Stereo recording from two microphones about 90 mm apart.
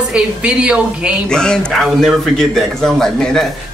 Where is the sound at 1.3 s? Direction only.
10° left (ahead or behind).